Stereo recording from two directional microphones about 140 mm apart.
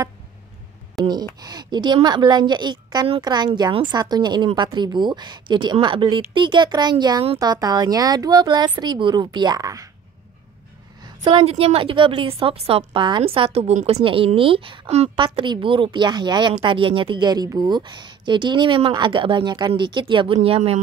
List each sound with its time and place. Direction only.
1.0 s a woman's voice: 30° right (ahead or behind)
11.2 s a woman's voice: 40° right (ahead or behind)